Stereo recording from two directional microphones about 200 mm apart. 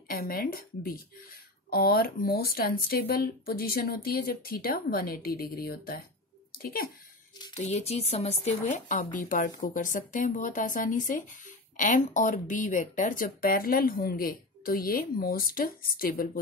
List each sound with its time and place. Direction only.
0.1 s speech: 45° left (ahead or behind)
7.5 s speech: 35° left (ahead or behind)